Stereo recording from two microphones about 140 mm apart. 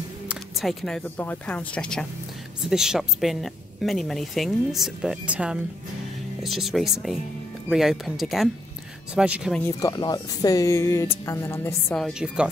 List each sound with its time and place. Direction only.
0.3 s a woman's voice: centre (ahead or behind)
9.7 s speech: 25° left (ahead or behind)
11.9 s a woman's voice: centre (ahead or behind)